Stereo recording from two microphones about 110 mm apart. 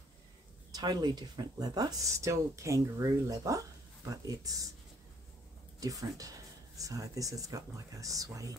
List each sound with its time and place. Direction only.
0.7 s speech: 35° right (ahead or behind)
5.8 s speech: 30° right (ahead or behind)